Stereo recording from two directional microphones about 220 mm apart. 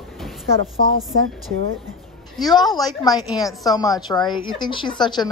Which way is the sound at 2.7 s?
20° left (ahead or behind).